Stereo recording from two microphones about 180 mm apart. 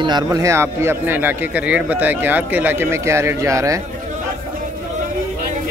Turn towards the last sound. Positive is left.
turn(degrees=-15)  # may be behind; listen again after turning